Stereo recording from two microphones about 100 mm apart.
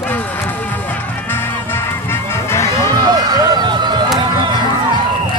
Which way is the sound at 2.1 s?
25° left (ahead or behind).